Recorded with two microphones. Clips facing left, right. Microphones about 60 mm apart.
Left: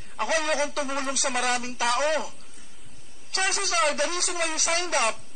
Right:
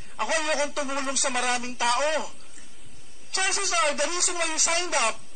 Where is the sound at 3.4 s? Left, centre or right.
Centre.